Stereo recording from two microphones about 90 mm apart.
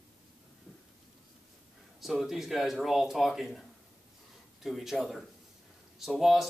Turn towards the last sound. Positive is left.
turn(degrees=-5)  # may be behind; listen again after turning